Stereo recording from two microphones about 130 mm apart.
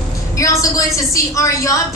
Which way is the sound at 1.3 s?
25° left (ahead or behind).